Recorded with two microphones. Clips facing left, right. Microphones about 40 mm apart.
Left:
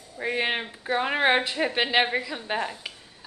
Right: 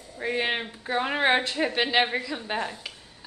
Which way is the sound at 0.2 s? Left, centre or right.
Centre.